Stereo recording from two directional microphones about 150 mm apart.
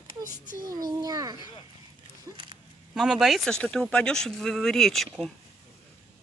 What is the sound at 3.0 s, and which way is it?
Speech, centre (ahead or behind).